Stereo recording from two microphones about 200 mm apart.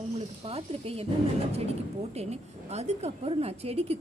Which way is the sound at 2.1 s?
30° right (ahead or behind).